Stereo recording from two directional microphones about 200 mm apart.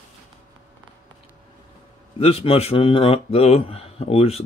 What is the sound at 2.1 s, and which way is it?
Speech, 30° left (ahead or behind).